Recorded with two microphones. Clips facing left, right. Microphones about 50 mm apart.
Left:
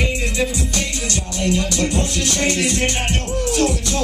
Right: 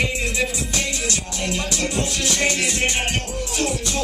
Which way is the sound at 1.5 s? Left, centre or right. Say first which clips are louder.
Left 4 dB; centre.